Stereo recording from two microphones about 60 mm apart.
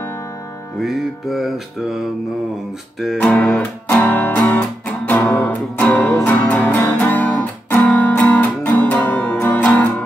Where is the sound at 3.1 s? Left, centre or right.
Left.